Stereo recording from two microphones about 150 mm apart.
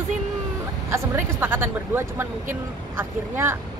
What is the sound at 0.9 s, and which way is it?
Speech, 15° right (ahead or behind).